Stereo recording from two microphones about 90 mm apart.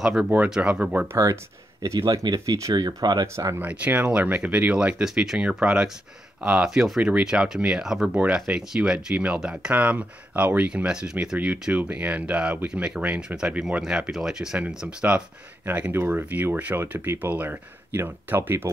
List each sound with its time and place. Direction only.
0.0 s speech: 5° right (ahead or behind)
0.3 s speech: 15° right (ahead or behind)
1.0 s speech: 35° right (ahead or behind)
2.0 s speech: 50° right (ahead or behind)
3.3 s speech: 30° right (ahead or behind)
3.6 s speech: 15° right (ahead or behind)
11.3 s speech: 20° right (ahead or behind)